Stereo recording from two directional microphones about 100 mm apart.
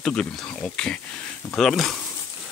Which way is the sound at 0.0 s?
10° left (ahead or behind).